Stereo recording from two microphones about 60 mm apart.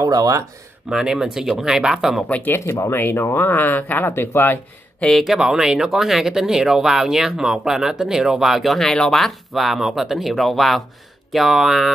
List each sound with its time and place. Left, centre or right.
0.0 s speech: right
0.8 s speech: centre
2.2 s speech: left
2.5 s speech: left
4.1 s speech: left
5.2 s speech: centre